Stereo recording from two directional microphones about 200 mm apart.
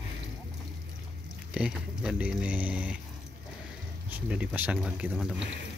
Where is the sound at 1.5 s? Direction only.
5° right (ahead or behind).